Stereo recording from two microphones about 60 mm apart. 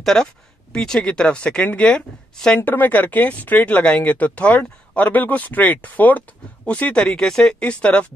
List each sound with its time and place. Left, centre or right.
0.0 s speech: centre
2.6 s speech: left
7.0 s speech: centre